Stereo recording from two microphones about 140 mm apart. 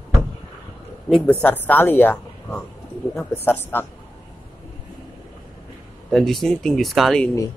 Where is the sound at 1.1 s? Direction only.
10° left (ahead or behind).